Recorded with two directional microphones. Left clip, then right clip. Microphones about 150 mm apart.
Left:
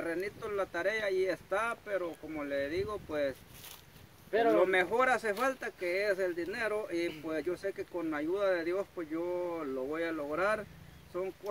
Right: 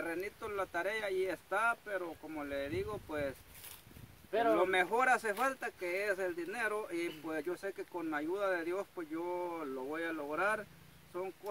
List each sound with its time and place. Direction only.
0.0 s speech: 15° right (ahead or behind)
4.3 s a man's voice: 25° right (ahead or behind)
4.6 s speech: 10° right (ahead or behind)